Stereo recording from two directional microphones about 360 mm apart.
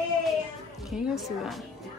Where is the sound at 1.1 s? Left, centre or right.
Centre.